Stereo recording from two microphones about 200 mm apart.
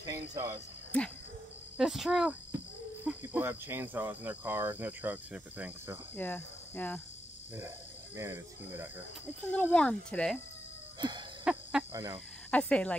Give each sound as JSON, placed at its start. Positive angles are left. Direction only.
{"t": 0.0, "sound": "speech", "side_deg": -20}
{"t": 0.9, "sound": "speech", "side_deg": 5}
{"t": 3.2, "sound": "speech", "side_deg": -10}
{"t": 6.1, "sound": "cricket", "side_deg": 10}
{"t": 8.2, "sound": "speech", "side_deg": -15}
{"t": 9.5, "sound": "speech", "side_deg": 5}
{"t": 11.0, "sound": "wheeze", "side_deg": -20}
{"t": 11.5, "sound": "cricket", "side_deg": -5}
{"t": 11.9, "sound": "speech", "side_deg": -20}
{"t": 12.4, "sound": "speech", "side_deg": 5}